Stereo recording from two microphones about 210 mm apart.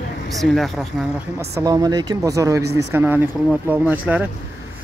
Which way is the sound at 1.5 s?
15° right (ahead or behind).